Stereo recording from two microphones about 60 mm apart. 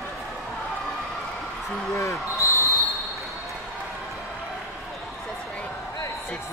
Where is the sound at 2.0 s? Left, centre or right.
Left.